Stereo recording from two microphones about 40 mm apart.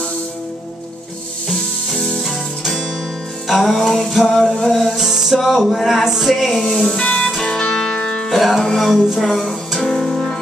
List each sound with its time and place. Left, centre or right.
2.0 s music: centre
3.4 s music: centre
4.9 s music: centre
6.6 s speech: centre
7.0 s music: left
7.2 s music: centre; by 8.3 s left
8.3 s music: centre
9.2 s speech: centre
9.8 s music: centre